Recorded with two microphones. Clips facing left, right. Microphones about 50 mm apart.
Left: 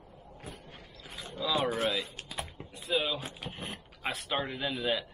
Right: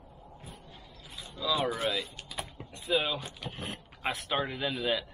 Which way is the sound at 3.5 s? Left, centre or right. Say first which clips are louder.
Right 1 dB; centre.